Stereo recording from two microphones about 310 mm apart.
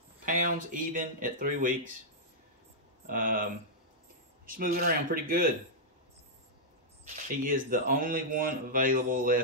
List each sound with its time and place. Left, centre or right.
0.2 s speech: right
3.1 s speech: right
4.6 s speech: right
7.4 s speech: right